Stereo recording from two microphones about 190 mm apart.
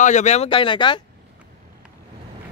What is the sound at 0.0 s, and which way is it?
Speech, 40° left (ahead or behind).